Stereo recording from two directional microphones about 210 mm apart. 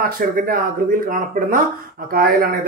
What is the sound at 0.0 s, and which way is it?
Speech, 45° right (ahead or behind).